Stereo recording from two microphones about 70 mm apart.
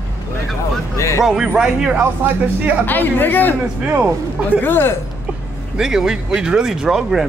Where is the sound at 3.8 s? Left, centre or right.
Centre.